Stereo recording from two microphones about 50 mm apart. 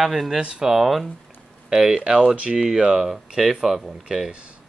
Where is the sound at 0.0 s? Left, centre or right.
Centre.